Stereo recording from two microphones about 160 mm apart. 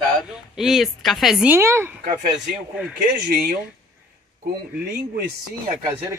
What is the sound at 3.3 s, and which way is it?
Speech, 75° right (ahead or behind).